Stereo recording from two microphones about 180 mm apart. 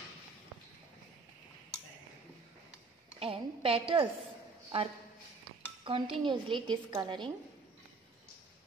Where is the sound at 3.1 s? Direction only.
30° right (ahead or behind).